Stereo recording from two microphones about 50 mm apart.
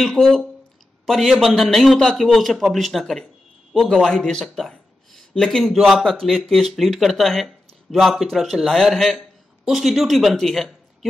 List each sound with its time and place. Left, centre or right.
0.2 s speech: centre
1.0 s speech: centre
2.0 s a man's voice: centre
10.4 s a sound: centre